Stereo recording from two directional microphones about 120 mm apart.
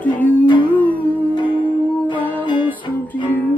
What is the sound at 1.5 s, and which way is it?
Music, 40° left (ahead or behind).